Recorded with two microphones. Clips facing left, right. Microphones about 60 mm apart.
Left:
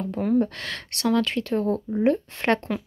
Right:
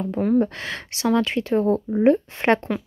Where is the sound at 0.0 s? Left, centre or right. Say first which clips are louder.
Right 3 dB; centre.